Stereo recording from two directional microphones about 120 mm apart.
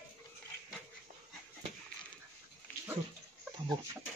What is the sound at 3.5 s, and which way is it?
Chicken, 40° right (ahead or behind).